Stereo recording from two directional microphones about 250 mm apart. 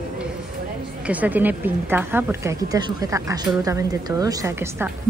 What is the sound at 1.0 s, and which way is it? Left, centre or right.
A woman's voice, centre.